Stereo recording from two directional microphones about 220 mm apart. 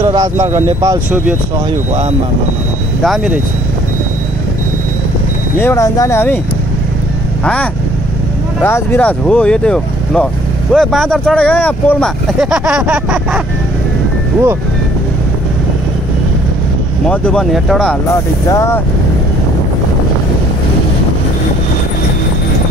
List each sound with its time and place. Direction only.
0.0 s speech: 20° right (ahead or behind)
3.0 s speech: centre (ahead or behind)
5.6 s speech: 10° left (ahead or behind)
8.5 s speech: 10° left (ahead or behind)
17.1 s speech: 5° left (ahead or behind)
18.5 s speech: 15° left (ahead or behind)